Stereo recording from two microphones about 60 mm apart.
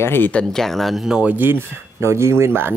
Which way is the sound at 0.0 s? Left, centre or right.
Left.